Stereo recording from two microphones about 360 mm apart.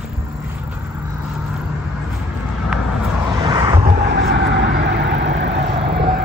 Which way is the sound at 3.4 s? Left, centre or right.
Centre.